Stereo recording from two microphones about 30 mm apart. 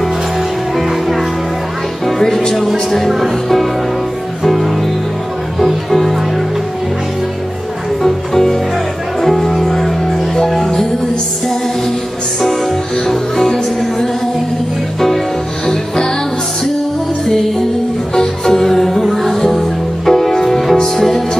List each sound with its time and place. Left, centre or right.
2.0 s music: centre
2.9 s speech: centre
4.4 s music: centre
8.0 s music: centre
12.4 s music: centre
15.6 s music: centre
18.1 s music: centre
20.7 s music: left